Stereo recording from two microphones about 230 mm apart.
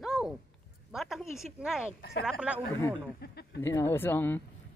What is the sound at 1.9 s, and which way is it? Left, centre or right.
Speech, left.